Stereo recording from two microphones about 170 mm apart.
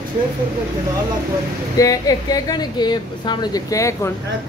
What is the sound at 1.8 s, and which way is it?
Speech, 20° left (ahead or behind).